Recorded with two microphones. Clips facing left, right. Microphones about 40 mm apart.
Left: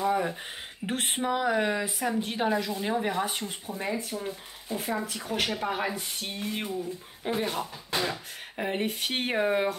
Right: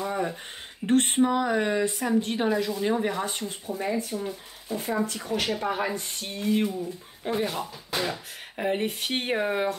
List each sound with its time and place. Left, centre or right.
0.0 s a sound: centre
0.8 s speech: centre
4.3 s speech: centre